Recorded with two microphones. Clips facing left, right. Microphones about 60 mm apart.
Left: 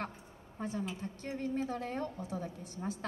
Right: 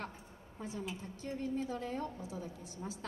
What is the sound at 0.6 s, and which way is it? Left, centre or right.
A woman's voice, left.